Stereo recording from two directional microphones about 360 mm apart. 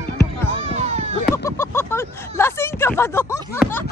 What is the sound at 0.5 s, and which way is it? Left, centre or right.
Music, centre.